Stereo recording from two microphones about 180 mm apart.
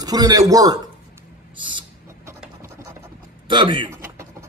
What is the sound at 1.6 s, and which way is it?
Owl, 25° right (ahead or behind).